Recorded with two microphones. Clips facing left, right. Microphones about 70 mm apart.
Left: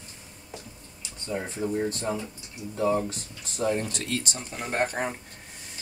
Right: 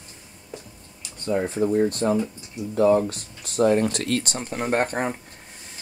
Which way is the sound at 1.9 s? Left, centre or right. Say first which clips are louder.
Right 8 dB; right.